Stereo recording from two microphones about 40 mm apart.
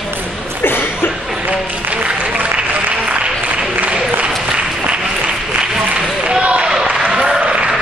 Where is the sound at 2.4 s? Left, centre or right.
Right.